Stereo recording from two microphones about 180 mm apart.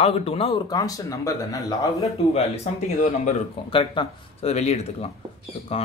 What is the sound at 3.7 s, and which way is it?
Speech, 30° left (ahead or behind).